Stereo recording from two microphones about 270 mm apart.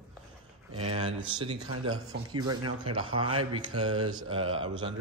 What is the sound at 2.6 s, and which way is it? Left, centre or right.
Speech, right.